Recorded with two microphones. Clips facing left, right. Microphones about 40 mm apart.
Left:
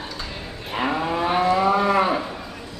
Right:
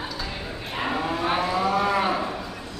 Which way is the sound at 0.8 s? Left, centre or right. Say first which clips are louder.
Left 3 dB; centre.